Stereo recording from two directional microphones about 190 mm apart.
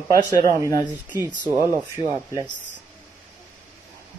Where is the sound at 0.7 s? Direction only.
10° left (ahead or behind).